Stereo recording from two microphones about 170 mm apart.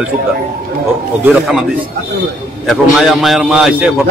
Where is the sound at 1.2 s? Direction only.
Centre (ahead or behind).